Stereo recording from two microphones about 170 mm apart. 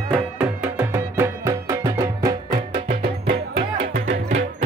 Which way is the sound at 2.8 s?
60° right (ahead or behind).